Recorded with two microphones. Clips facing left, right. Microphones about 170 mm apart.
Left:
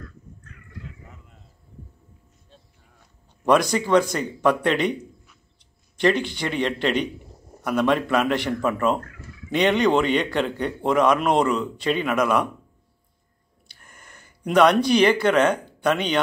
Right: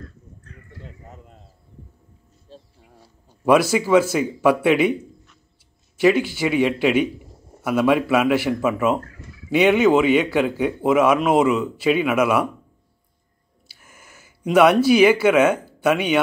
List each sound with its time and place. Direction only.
0.0 s a sound: 30° right (ahead or behind)
2.5 s music: 35° right (ahead or behind)
3.4 s speech: 5° right (ahead or behind)
5.9 s speech: 5° right (ahead or behind)
13.7 s speech: 5° right (ahead or behind)